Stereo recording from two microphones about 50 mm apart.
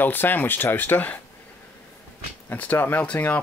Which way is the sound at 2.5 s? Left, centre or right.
Left.